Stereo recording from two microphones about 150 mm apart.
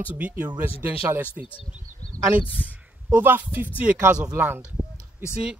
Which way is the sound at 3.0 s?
15° right (ahead or behind).